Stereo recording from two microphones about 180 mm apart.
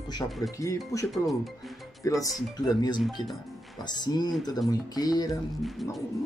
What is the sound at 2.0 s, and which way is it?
Speech, 20° left (ahead or behind).